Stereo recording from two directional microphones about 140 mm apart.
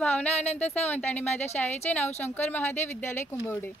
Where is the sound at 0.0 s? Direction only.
10° left (ahead or behind).